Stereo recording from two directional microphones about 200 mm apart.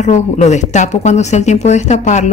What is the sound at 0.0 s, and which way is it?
Speech, 35° left (ahead or behind).